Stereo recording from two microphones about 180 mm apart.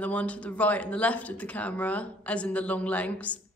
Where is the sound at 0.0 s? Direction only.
10° left (ahead or behind).